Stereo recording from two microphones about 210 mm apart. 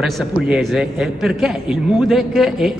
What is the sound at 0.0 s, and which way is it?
A woman's voice, centre (ahead or behind).